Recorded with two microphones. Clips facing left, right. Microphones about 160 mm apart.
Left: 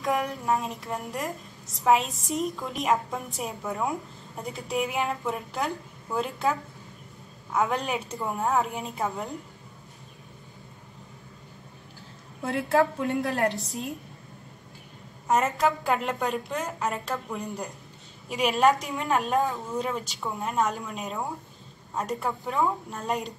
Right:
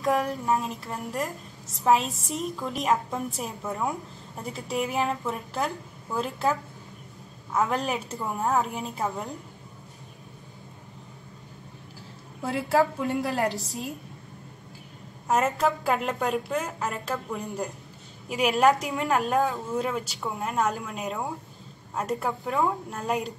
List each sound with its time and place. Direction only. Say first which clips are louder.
0.0 s a woman's voice: right 2 dB; centre (ahead or behind)
7.9 s a woman's voice: even; centre (ahead or behind)
12.4 s a woman's voice: even; 5° right (ahead or behind)
15.2 s a woman's voice: even; centre (ahead or behind)